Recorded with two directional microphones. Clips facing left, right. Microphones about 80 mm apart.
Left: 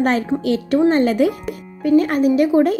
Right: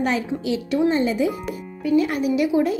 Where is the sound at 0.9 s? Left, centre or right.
Left.